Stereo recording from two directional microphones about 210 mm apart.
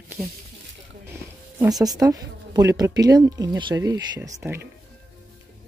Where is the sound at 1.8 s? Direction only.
15° right (ahead or behind).